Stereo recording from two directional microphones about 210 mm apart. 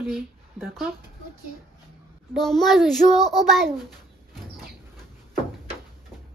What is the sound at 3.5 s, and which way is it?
Speech, centre (ahead or behind).